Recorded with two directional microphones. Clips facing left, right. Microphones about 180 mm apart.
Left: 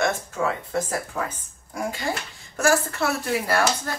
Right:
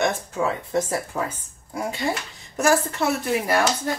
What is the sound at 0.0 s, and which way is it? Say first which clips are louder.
Speech: right 1 dB; 20° right (ahead or behind).